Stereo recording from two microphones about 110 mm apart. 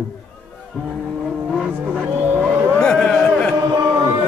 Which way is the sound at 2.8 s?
5° left (ahead or behind).